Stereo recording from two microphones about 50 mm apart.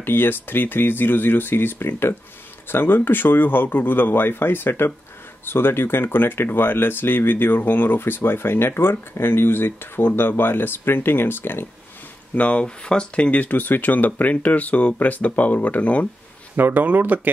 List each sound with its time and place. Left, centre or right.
0.0 s speech: left
12.4 s speech: left
16.5 s speech: right